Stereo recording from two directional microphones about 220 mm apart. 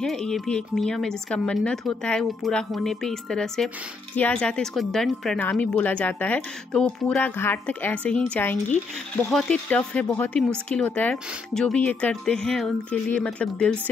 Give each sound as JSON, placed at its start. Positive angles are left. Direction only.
{"t": 0.0, "sound": "speech", "side_deg": 0}